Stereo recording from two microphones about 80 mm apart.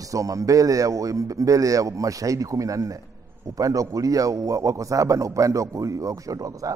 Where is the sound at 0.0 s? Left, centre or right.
Right.